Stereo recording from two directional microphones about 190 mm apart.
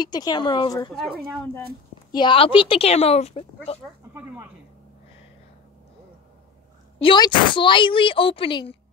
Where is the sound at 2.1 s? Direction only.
25° left (ahead or behind).